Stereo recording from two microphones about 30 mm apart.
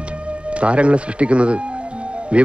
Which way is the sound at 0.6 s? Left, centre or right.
Right.